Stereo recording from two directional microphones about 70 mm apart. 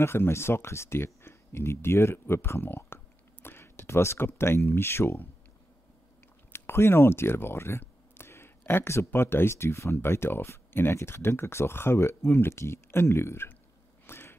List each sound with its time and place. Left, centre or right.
0.0 s speech: left
6.5 s speech: left
14.0 s a sound: left